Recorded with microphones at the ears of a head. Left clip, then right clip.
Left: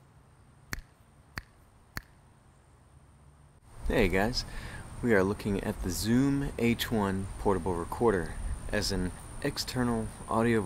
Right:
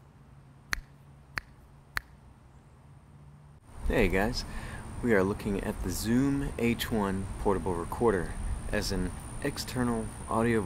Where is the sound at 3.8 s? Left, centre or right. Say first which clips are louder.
Even; centre.